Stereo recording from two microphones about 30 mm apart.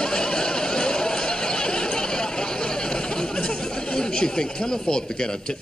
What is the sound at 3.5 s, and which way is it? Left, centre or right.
Speech, left.